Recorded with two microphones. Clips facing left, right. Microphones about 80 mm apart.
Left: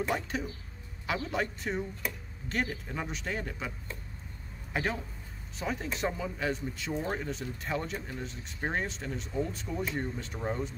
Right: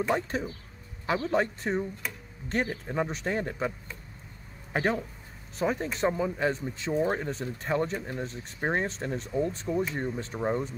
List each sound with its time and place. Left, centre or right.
0.1 s speech: right
4.7 s speech: right
6.9 s speech: centre
7.2 s speech: right